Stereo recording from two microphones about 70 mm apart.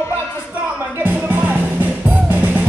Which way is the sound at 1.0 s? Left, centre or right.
Right.